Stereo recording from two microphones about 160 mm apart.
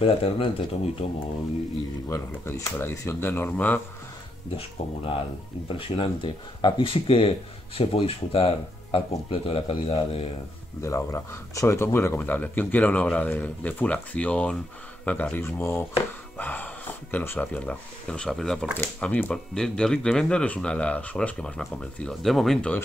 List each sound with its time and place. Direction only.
0.0 s speech: 35° left (ahead or behind)
2.0 s speech: 20° left (ahead or behind)
4.6 s speech: 35° left (ahead or behind)
10.8 s speech: 20° left (ahead or behind)